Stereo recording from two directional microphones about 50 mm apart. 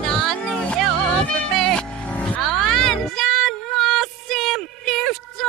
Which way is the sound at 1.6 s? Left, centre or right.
Centre.